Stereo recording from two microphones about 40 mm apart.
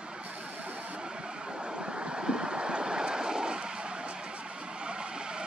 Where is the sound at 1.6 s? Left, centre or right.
Right.